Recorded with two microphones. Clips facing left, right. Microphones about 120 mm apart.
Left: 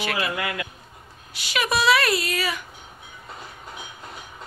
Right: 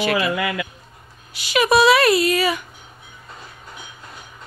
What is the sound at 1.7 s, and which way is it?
Speech, 20° right (ahead or behind).